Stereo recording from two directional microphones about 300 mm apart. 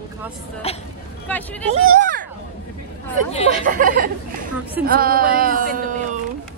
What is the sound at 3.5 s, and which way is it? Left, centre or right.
Speech, right.